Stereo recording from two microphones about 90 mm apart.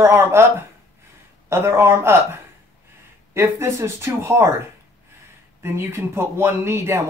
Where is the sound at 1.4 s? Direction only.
30° right (ahead or behind).